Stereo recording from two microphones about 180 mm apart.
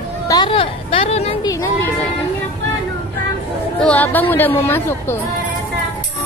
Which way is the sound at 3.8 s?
10° left (ahead or behind).